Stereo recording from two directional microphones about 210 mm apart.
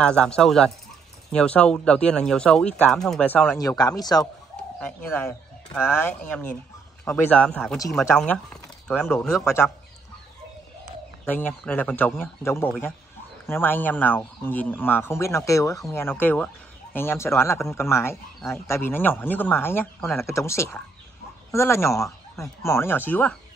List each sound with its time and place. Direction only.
0.0 s speech: 5° left (ahead or behind)
3.5 s speech: 20° left (ahead or behind); by 9.5 s centre (ahead or behind)
11.2 s speech: 10° left (ahead or behind)